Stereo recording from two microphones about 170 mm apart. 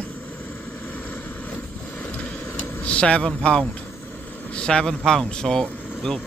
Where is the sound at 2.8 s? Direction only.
5° left (ahead or behind).